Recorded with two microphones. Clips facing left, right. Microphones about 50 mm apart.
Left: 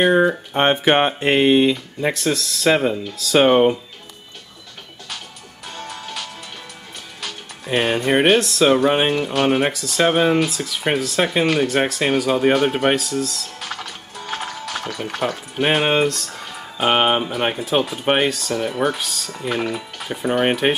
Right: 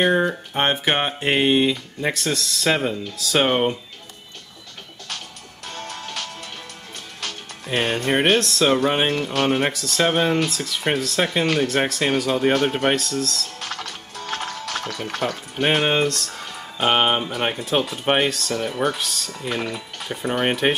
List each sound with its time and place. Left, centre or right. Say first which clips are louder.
0.0 s speech: left 4 dB; centre
0.5 s speech: left 5 dB; left
1.2 s speech: left 1 dB; centre
5.8 s music: left 1 dB; centre
7.2 s speech: even; centre